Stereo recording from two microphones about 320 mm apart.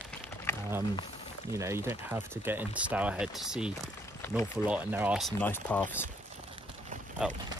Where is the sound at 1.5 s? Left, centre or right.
Centre.